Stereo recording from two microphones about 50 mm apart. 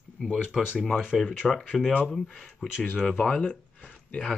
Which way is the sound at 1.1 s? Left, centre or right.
Centre.